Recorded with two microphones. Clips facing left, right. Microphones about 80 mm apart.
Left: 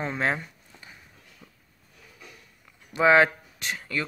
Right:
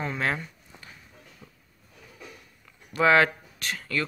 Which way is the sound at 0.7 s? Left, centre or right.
Centre.